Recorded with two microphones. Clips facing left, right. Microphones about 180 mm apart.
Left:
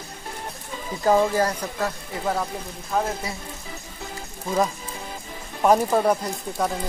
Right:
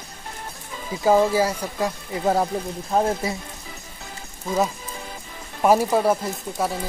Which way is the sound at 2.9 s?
30° right (ahead or behind).